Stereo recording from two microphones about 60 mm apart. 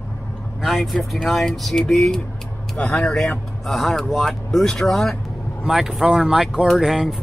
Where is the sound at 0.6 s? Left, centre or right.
Centre.